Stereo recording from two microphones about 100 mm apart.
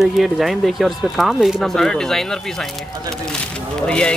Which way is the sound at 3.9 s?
10° left (ahead or behind).